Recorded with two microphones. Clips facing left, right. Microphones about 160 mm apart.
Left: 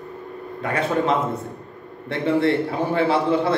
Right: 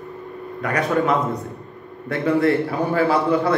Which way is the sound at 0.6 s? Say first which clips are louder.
Right 1 dB; 25° left (ahead or behind).